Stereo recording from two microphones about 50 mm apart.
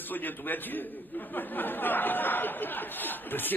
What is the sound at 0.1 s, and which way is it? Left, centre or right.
A man's voice, left.